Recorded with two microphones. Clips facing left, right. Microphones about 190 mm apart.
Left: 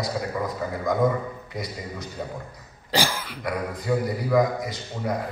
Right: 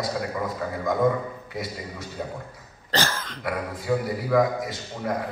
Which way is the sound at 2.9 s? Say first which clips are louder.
Left 1 dB; 10° left (ahead or behind).